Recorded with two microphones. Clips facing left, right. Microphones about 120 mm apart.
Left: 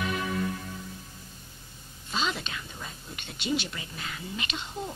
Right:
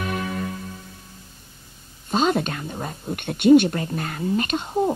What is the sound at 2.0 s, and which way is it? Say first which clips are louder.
Speech: right 11 dB; 45° right (ahead or behind).